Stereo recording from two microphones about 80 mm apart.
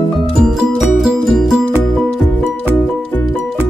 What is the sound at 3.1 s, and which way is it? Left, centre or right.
Music, left.